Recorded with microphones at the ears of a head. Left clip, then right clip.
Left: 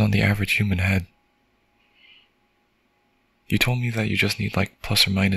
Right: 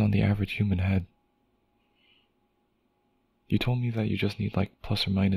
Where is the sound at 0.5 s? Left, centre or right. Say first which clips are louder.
Left 10 dB; left.